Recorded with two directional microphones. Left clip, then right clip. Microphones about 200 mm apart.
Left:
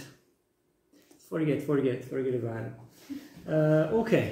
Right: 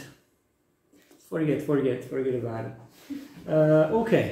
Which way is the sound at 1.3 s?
5° left (ahead or behind).